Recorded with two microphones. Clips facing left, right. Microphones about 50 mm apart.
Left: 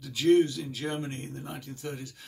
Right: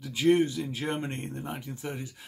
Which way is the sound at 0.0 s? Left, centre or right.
Right.